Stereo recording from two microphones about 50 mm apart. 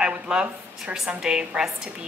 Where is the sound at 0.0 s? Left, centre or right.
Centre.